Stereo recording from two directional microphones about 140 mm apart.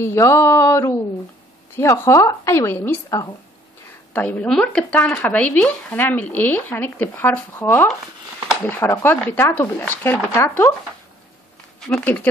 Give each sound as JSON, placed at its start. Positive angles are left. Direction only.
{"t": 0.0, "sound": "a woman's voice", "side_deg": 20}
{"t": 11.8, "sound": "speech", "side_deg": 5}